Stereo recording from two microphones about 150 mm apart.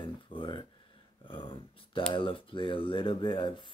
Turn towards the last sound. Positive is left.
turn(degrees=30)  # may be behind; listen again after turning